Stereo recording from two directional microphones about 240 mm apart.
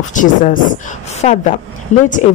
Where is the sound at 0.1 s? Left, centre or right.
Left.